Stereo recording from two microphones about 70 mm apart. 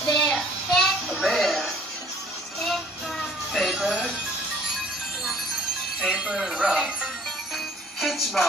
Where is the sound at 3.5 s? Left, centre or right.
Centre.